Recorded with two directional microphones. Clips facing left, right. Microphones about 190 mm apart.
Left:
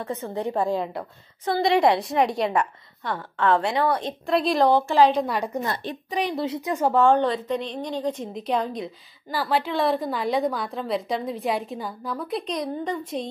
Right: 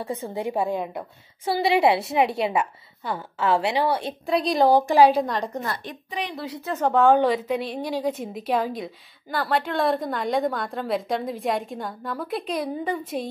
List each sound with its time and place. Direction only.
0.0 s a woman's voice: 10° right (ahead or behind)
4.7 s a woman's voice: 10° right (ahead or behind)
5.2 s a woman's voice: 10° left (ahead or behind)
6.3 s a woman's voice: 25° left (ahead or behind)
6.7 s a woman's voice: 5° left (ahead or behind)